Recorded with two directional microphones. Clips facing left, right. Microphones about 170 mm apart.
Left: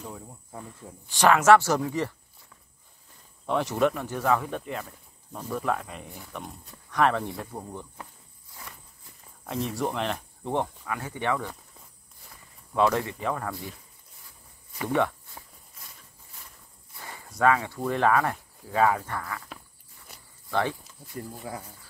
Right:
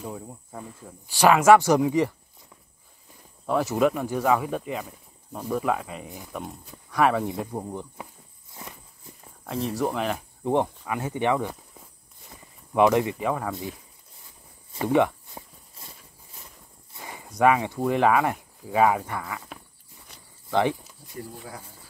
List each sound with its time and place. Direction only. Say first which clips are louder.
0.5 s speech: right 2 dB; 5° right (ahead or behind)
3.4 s speech: right 2 dB; 5° right (ahead or behind)
6.0 s speech: right 3 dB; 15° right (ahead or behind)
6.3 s speech: right 4 dB; 5° right (ahead or behind)
8.5 s walk: right 4 dB; 20° right (ahead or behind)
9.5 s speech: right 3 dB; centre (ahead or behind); by 13.7 s 20° right (ahead or behind)
14.2 s walk: right 2 dB; 25° right (ahead or behind)
14.9 s speech: right 4 dB; 15° right (ahead or behind)
15.7 s clip-clop: right 4 dB; 30° right (ahead or behind)
16.9 s a sound: right 3 dB; 15° right (ahead or behind)
17.8 s speech: right 2 dB; 10° right (ahead or behind)